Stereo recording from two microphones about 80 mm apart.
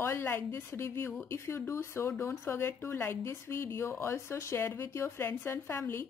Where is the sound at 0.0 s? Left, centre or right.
Left.